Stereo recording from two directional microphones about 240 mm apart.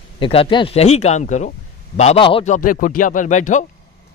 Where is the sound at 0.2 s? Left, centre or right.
Left.